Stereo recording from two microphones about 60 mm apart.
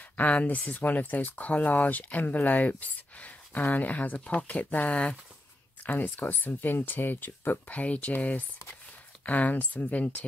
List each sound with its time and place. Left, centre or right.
0.2 s speech: left
5.9 s speech: left